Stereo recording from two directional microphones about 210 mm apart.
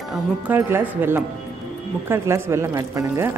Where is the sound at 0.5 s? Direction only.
10° right (ahead or behind).